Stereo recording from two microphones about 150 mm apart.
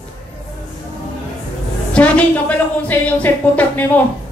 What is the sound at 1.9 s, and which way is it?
A woman's voice, 10° left (ahead or behind).